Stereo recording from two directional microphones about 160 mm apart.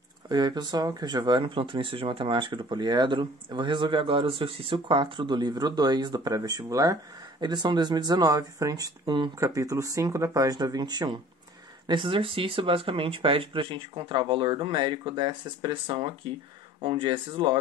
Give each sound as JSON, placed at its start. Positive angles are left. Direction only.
{"t": 0.3, "sound": "speech", "side_deg": -25}